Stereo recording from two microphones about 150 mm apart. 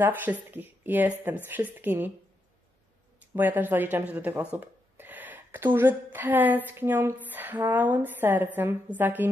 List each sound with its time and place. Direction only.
0.0 s speech: 10° right (ahead or behind)
3.3 s speech: 10° right (ahead or behind)